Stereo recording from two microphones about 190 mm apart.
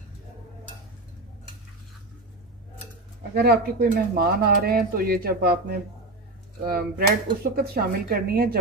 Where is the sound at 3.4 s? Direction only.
55° right (ahead or behind).